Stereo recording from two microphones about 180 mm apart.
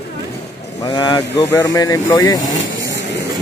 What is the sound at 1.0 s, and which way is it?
Speech, 20° left (ahead or behind).